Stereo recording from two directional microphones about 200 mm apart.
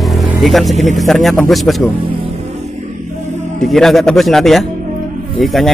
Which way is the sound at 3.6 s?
Centre (ahead or behind).